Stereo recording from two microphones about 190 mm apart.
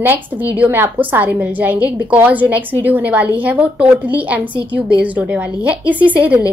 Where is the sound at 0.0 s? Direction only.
10° right (ahead or behind).